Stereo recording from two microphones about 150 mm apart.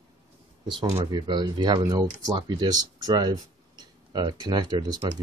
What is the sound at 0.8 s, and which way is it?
Speech, 35° right (ahead or behind).